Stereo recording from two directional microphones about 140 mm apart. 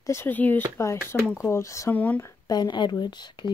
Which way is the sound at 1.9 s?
10° left (ahead or behind).